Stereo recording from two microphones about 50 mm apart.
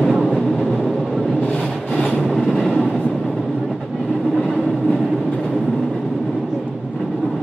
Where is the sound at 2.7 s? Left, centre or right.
Centre.